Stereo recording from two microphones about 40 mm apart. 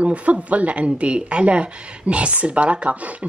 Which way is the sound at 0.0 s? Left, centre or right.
Right.